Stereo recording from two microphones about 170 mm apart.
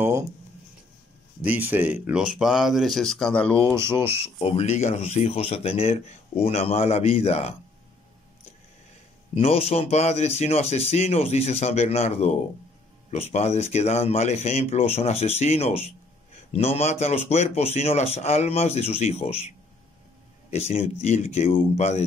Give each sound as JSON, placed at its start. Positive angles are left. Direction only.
{"t": 1.4, "sound": "speech", "side_deg": -10}
{"t": 3.9, "sound": "speech", "side_deg": 35}
{"t": 9.3, "sound": "speech", "side_deg": 35}
{"t": 20.5, "sound": "speech", "side_deg": 40}